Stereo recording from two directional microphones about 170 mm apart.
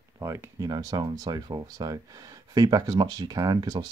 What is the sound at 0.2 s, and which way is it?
Speech, 15° right (ahead or behind).